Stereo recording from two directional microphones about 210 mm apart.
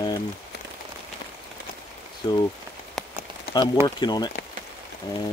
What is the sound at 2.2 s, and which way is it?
Speech, 20° left (ahead or behind).